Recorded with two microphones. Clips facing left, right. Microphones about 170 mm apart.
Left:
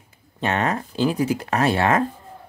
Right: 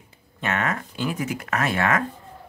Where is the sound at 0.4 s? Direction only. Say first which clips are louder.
Left 4 dB; 30° left (ahead or behind).